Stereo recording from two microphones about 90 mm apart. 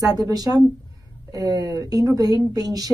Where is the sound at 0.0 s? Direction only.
45° right (ahead or behind).